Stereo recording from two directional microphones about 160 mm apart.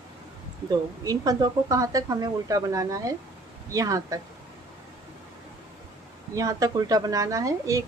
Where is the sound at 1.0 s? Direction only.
25° right (ahead or behind).